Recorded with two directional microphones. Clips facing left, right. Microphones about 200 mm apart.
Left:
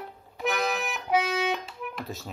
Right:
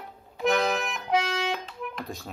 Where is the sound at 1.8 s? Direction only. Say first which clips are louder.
Even; 5° left (ahead or behind).